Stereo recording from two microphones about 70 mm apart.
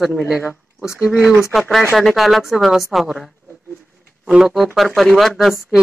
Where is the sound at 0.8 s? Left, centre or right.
Left.